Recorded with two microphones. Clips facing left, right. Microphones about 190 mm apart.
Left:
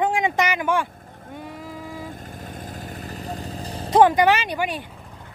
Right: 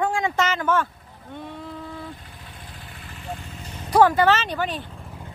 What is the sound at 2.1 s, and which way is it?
Vehicle, 45° left (ahead or behind).